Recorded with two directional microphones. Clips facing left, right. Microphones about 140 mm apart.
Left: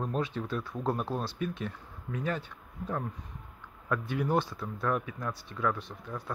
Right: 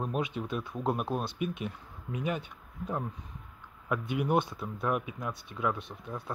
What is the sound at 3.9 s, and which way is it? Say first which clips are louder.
Speech: right 1 dB; 20° right (ahead or behind).